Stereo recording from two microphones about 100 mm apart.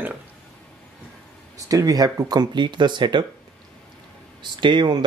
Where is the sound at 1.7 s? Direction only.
35° right (ahead or behind).